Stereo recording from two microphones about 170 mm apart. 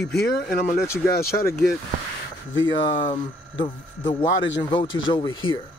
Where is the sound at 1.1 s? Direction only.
65° left (ahead or behind).